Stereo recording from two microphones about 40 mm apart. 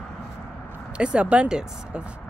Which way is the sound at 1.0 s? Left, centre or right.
Right.